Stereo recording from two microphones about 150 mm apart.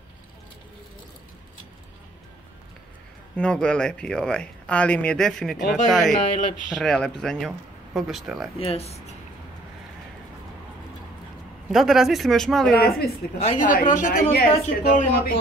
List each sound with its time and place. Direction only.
3.3 s speech: 5° left (ahead or behind)
8.5 s speech: 40° left (ahead or behind)
11.7 s speech: centre (ahead or behind)
13.4 s speech: 55° left (ahead or behind)
14.3 s speech: 75° left (ahead or behind)